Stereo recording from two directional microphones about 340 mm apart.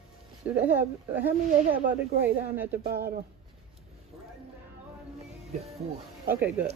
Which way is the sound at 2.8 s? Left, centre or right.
Right.